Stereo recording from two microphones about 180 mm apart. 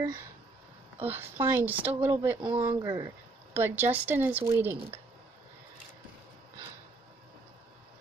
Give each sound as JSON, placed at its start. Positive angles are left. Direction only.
{"t": 0.0, "sound": "speech", "side_deg": -15}